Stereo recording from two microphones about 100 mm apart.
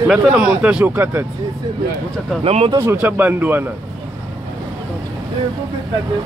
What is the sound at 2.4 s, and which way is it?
Speech, 85° right.